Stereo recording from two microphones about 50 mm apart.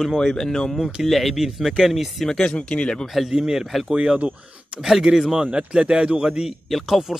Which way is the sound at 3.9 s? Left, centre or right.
Centre.